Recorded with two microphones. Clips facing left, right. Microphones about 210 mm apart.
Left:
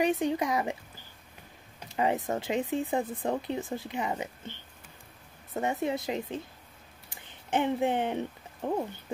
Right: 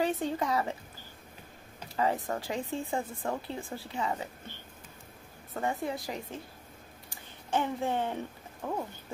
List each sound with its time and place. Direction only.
0.0 s speech: 15° left (ahead or behind)
2.0 s speech: 20° left (ahead or behind)
7.1 s a sound: 20° left (ahead or behind)
8.6 s speech: 20° left (ahead or behind)